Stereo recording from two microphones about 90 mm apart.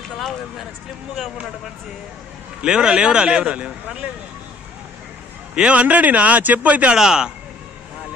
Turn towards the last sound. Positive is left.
turn(degrees=-5)  # may be behind; listen again after turning